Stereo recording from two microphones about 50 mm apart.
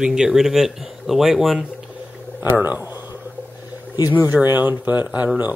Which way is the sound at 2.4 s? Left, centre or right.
Right.